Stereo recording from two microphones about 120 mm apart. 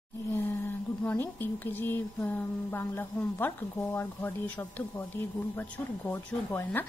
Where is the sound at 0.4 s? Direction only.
15° left (ahead or behind).